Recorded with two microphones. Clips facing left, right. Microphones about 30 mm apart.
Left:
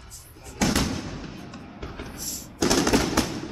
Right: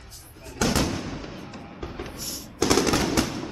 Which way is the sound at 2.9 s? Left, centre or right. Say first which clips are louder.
Left 1 dB; centre.